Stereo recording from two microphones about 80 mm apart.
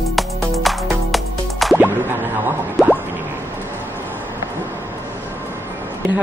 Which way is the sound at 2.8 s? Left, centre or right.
Centre.